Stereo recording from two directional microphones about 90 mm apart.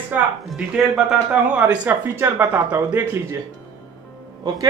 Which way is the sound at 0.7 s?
5° right (ahead or behind).